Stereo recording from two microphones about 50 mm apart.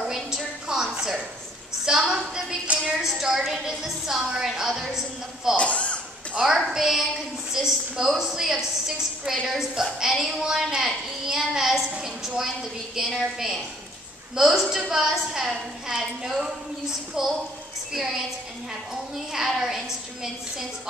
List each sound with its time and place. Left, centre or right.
0.1 s a sound: centre
1.9 s a woman's voice: centre
5.6 s speech: left
6.4 s a woman's voice: centre
12.9 s a woman's voice: centre